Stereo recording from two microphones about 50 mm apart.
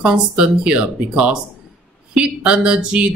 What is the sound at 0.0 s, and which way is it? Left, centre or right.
Speech, right.